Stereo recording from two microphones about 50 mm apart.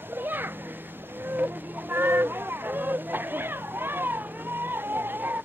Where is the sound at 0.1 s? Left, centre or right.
Right.